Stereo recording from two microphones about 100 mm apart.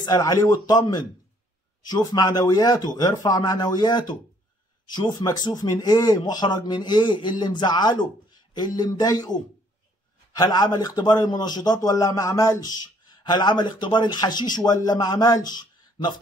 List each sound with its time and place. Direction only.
0.0 s speech: 35° left (ahead or behind)